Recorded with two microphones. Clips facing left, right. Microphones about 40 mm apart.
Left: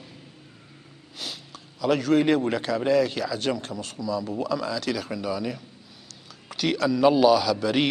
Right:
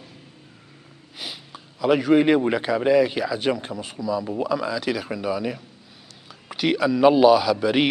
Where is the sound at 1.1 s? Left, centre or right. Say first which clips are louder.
Right 1 dB; centre.